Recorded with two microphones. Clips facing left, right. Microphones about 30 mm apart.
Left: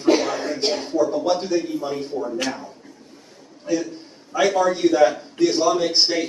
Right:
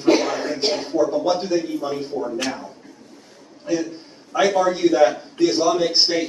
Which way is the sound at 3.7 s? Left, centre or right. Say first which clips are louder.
Even; centre.